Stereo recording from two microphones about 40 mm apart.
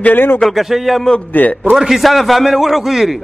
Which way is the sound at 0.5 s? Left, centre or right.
Centre.